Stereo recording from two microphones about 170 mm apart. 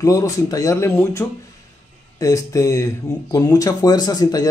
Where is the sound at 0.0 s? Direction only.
20° left (ahead or behind).